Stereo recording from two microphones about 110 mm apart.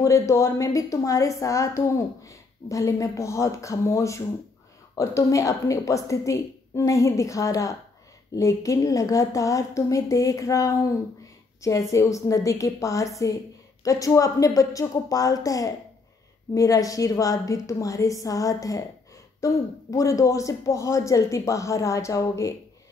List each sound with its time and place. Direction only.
0.0 s a woman's voice: 30° left (ahead or behind)